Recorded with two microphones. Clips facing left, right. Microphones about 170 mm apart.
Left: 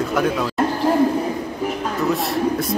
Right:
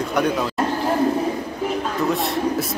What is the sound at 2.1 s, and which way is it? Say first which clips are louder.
Speech: left 2 dB; centre (ahead or behind).